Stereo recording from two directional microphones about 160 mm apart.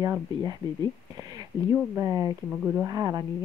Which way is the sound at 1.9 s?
20° right (ahead or behind).